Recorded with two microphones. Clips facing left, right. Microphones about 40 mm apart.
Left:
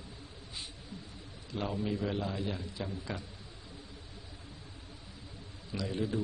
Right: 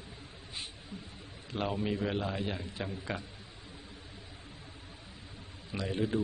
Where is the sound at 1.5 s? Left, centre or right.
Right.